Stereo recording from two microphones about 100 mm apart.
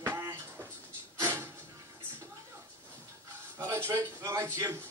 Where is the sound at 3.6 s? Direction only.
30° right (ahead or behind).